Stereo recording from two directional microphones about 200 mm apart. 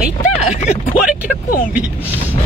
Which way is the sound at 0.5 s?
35° left (ahead or behind).